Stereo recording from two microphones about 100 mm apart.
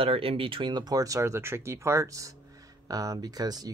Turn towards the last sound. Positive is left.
turn(degrees=-40)  # may be behind; listen again after turning